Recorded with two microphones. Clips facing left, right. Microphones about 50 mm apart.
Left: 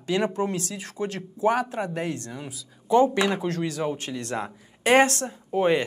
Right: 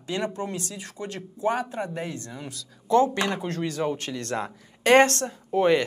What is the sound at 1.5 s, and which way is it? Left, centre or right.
Speech, left.